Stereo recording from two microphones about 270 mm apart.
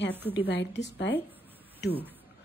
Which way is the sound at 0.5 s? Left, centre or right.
Left.